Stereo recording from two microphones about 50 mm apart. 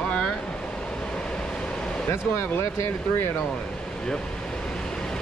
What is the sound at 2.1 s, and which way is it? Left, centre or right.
Speech, left.